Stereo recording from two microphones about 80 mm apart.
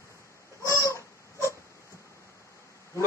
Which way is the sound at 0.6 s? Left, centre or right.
Left.